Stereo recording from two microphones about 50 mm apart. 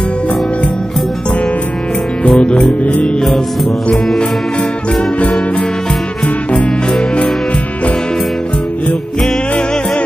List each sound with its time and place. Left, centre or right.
2.3 s music: centre
6.2 s music: left